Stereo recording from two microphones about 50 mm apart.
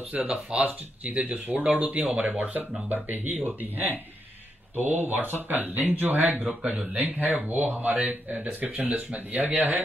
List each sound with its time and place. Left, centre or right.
0.1 s speech: right